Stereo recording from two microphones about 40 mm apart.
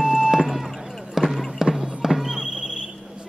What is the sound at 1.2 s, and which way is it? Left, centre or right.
Music, centre.